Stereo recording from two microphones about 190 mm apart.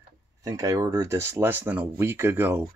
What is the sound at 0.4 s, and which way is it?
Speech, 15° right (ahead or behind).